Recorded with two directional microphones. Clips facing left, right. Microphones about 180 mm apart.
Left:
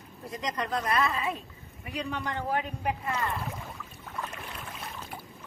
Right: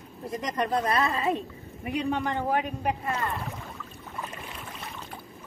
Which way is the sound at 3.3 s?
Centre (ahead or behind).